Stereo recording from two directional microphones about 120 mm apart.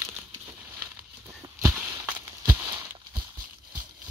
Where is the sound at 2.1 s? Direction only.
20° right (ahead or behind).